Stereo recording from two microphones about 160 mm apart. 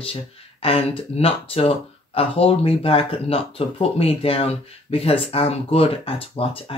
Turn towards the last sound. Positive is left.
turn(degrees=35)  # may be behind; listen again after turning